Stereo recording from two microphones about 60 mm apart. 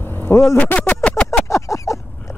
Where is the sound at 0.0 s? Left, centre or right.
Left.